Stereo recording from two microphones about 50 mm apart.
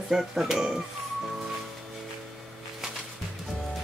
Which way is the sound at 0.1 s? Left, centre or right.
Centre.